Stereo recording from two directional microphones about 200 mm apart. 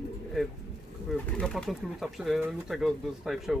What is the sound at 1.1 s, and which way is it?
Speech, 5° left (ahead or behind).